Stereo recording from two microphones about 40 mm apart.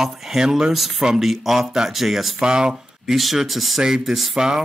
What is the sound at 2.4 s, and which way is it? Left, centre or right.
Speech, right.